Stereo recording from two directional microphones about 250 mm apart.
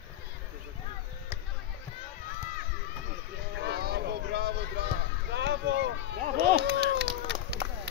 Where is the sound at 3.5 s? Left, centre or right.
Right.